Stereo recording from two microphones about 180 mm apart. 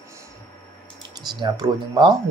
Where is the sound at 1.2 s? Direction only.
25° right (ahead or behind).